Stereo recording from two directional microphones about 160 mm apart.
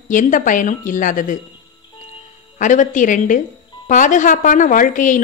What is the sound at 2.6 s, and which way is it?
A woman's voice, 50° left (ahead or behind).